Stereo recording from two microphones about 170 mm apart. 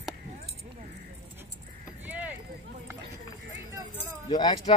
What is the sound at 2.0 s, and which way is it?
Clip-clop, 10° right (ahead or behind).